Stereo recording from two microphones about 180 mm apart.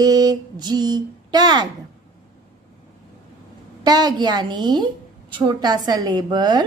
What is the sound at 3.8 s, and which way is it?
A woman's voice, 20° right (ahead or behind).